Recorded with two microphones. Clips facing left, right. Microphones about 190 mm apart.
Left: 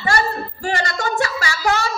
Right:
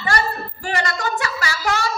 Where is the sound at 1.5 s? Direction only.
35° left (ahead or behind).